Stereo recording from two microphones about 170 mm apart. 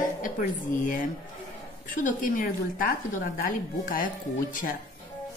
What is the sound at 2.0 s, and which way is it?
Speech, 50° left (ahead or behind).